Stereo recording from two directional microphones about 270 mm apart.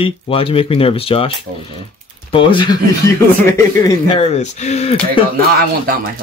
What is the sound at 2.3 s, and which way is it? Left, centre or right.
Speech, centre.